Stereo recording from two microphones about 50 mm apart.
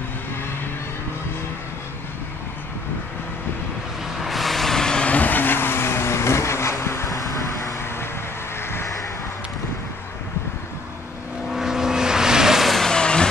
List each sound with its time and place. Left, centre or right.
4.2 s vehicle: centre
5.0 s vehicle: left
8.5 s vehicle: left
11.5 s vehicle: centre
12.7 s vehicle: centre